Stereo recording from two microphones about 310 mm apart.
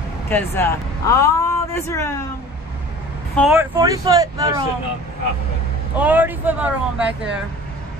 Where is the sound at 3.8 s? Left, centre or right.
Centre.